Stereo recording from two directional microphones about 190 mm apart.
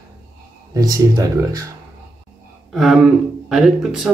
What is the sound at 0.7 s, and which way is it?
Speech, 20° right (ahead or behind).